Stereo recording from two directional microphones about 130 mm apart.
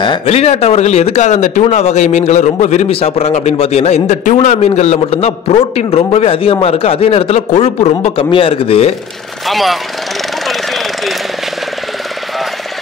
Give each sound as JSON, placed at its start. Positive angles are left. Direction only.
{"t": 0.3, "sound": "a man's voice", "side_deg": 50}
{"t": 8.3, "sound": "a man's voice", "side_deg": 45}
{"t": 9.5, "sound": "speech", "side_deg": 0}